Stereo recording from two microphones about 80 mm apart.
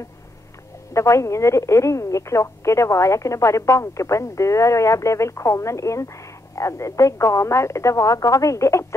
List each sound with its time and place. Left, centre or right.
0.9 s speech: left